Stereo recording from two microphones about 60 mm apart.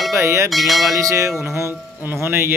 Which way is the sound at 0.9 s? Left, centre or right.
Right.